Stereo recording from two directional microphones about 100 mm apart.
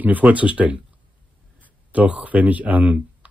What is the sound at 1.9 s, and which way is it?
Speech, 15° right (ahead or behind).